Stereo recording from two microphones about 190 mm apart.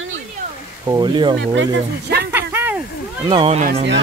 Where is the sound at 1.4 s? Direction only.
65° right (ahead or behind).